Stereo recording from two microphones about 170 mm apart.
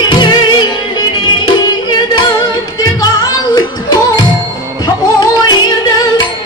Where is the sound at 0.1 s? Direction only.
25° left (ahead or behind).